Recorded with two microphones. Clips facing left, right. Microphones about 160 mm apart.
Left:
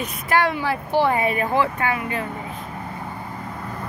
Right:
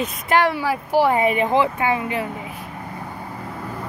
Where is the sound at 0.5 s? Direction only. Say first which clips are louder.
Right 2 dB; 10° right (ahead or behind).